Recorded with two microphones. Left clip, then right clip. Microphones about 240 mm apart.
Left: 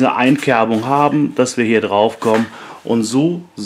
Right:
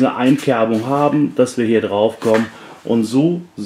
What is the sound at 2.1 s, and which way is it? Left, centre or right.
Speech, centre.